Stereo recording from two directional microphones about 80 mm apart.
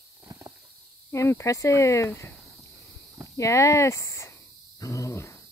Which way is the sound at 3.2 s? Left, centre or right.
Left.